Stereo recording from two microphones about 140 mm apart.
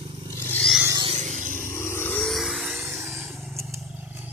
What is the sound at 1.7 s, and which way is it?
Vehicle, 20° left (ahead or behind).